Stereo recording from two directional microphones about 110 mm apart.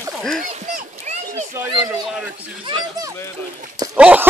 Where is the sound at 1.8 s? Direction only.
15° right (ahead or behind).